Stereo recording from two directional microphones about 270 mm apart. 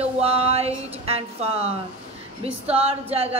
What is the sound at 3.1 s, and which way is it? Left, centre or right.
Speech, right.